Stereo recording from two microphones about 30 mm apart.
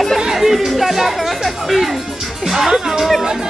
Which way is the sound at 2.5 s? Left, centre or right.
Centre.